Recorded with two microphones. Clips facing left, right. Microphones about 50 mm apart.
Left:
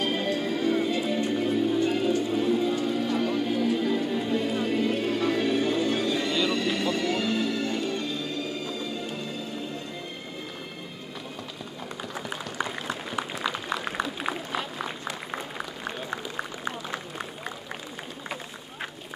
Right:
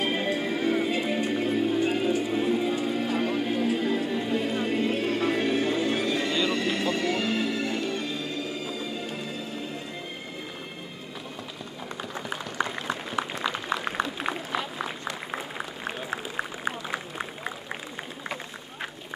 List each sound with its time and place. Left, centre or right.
0.0 s music: right
4.1 s music: centre
5.5 s music: centre
12.5 s a sound: centre